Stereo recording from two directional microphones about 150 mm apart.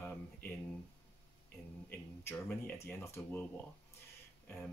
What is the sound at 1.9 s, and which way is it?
Speech, 10° left (ahead or behind).